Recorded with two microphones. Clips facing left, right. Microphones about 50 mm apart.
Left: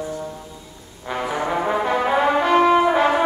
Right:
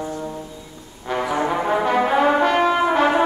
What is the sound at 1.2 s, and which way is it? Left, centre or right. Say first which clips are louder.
Brass instrument: right 2 dB; right.